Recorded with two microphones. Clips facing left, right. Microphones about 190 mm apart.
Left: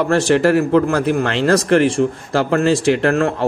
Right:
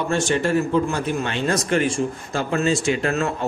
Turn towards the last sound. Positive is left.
turn(degrees=55)  # may be behind; listen again after turning